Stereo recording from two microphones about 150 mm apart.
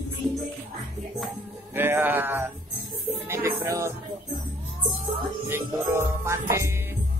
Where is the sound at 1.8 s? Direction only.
15° right (ahead or behind).